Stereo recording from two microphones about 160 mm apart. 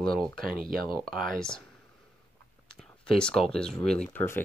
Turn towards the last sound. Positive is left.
turn(degrees=15)  # may be behind; listen again after turning